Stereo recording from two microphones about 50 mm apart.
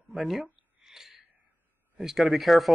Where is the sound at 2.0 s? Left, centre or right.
Centre.